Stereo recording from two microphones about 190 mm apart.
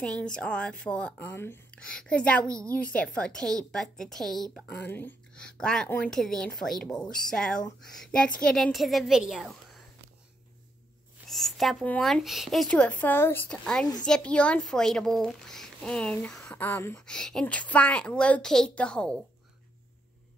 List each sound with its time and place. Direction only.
0.0 s speech: 5° left (ahead or behind)
2.4 s a woman's voice: 15° right (ahead or behind)
2.7 s speech: 5° left (ahead or behind)
11.2 s speech: centre (ahead or behind)